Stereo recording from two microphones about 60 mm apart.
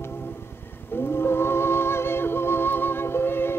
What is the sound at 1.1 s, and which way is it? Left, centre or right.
Music, left.